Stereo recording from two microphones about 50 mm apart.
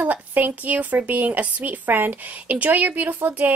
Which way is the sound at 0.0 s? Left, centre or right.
Right.